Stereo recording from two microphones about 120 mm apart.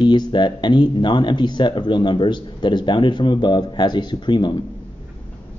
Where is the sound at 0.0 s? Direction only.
40° left (ahead or behind).